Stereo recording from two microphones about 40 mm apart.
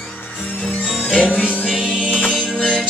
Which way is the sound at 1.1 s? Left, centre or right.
Right.